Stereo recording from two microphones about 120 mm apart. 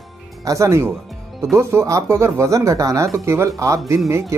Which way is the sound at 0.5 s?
25° right (ahead or behind).